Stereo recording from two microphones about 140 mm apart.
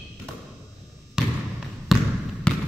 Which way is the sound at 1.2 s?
5° right (ahead or behind).